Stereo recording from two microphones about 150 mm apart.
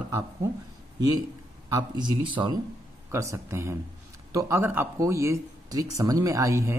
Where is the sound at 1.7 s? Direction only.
30° right (ahead or behind).